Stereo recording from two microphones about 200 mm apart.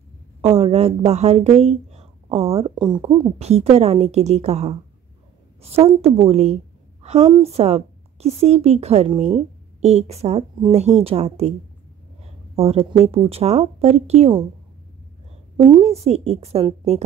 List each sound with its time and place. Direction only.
0.4 s a woman's voice: 30° right (ahead or behind)
12.5 s speech: 30° right (ahead or behind)
15.5 s speech: 25° right (ahead or behind)